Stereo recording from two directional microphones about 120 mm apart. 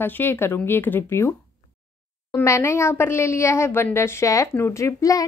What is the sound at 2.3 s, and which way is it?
Speech, 20° left (ahead or behind).